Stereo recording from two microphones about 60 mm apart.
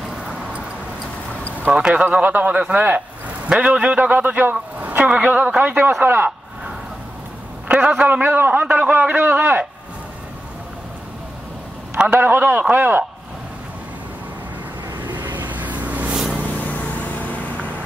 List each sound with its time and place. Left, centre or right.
0.1 s vehicle: centre
1.7 s a man's voice: centre; by 6.3 s right
7.6 s a man's voice: right
12.2 s a man's voice: right
15.0 s vehicle: right
16.5 s vehicle: left